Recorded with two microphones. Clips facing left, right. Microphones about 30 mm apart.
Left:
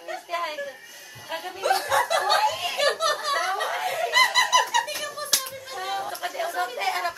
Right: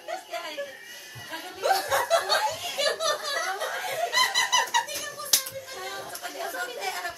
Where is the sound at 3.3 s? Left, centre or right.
Left.